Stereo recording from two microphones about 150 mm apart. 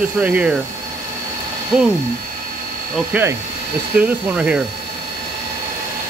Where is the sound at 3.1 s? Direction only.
15° right (ahead or behind).